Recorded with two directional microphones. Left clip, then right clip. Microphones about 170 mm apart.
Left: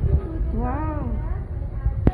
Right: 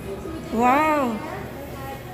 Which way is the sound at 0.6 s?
30° right (ahead or behind).